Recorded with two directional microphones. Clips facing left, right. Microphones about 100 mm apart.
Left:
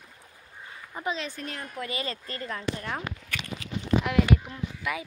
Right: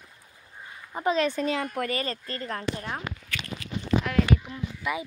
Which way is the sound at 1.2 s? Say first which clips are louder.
Right 10 dB; 90° right.